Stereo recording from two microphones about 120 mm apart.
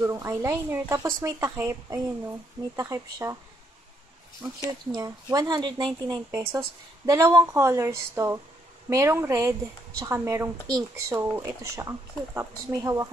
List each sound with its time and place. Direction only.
0.0 s speech: 25° right (ahead or behind)
4.6 s speech: 30° right (ahead or behind)